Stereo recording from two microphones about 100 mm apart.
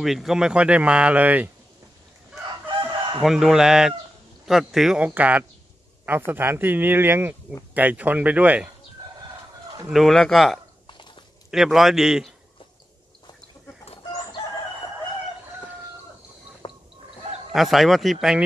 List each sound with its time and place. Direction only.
0.0 s speech: centre (ahead or behind)
2.8 s chicken: 55° right (ahead or behind)
3.2 s speech: 5° right (ahead or behind)
9.8 s speech: centre (ahead or behind)
10.9 s dog: 50° left (ahead or behind)
11.5 s speech: 5° right (ahead or behind)
16.6 s a sound: 50° left (ahead or behind)
17.5 s speech: centre (ahead or behind)